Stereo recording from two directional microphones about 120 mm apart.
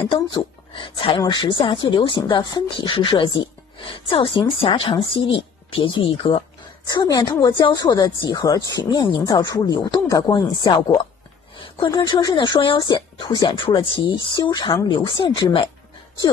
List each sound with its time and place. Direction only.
0.1 s a woman's voice: 40° left (ahead or behind)
6.9 s speech: 35° left (ahead or behind)